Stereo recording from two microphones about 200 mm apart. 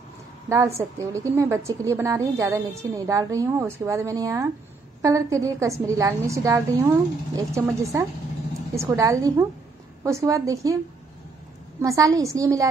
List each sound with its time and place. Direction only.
0.5 s a woman's voice: 15° right (ahead or behind)
11.8 s a woman's voice: 15° right (ahead or behind)